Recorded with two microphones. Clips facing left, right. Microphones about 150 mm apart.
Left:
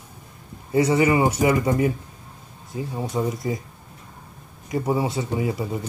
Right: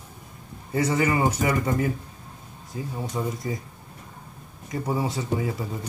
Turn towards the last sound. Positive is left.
turn(degrees=15)  # may be behind; listen again after turning